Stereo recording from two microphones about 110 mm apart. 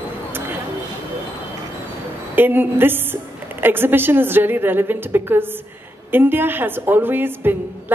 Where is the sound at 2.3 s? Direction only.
20° right (ahead or behind).